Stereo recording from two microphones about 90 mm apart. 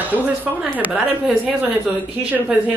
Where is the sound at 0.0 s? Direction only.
20° right (ahead or behind).